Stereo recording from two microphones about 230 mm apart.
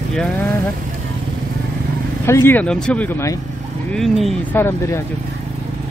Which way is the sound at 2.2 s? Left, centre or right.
Centre.